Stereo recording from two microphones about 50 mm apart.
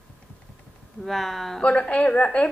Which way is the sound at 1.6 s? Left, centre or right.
Left.